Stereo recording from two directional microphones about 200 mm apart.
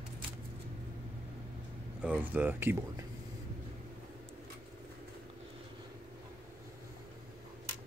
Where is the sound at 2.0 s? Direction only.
5° right (ahead or behind).